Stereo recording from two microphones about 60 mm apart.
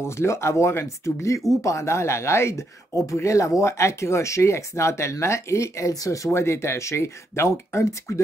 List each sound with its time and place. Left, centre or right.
0.0 s speech: left